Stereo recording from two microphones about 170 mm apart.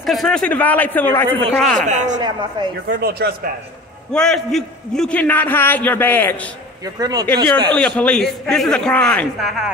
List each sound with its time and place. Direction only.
0.0 s a man's voice: centre (ahead or behind)
1.9 s a man's voice: 45° right (ahead or behind)
2.1 s speech: 25° right (ahead or behind)
2.9 s speech: 65° right (ahead or behind)
4.1 s a man's voice: 5° left (ahead or behind)
7.0 s speech: 20° right (ahead or behind)
7.7 s a man's voice: 5° left (ahead or behind)